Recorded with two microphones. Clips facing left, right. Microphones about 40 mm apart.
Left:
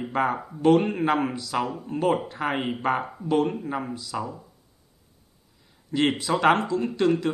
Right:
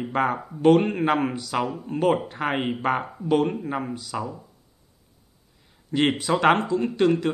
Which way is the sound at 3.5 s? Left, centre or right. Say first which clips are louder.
Right 1 dB; centre.